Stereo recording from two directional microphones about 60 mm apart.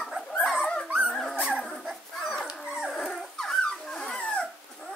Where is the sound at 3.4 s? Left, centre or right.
Centre.